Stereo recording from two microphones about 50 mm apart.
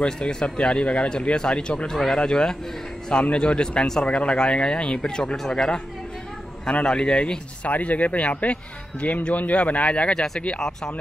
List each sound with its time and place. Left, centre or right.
0.0 s speech: centre
7.7 s speech: left; by 10.9 s centre